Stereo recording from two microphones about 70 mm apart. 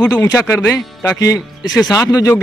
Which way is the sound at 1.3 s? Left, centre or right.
Left.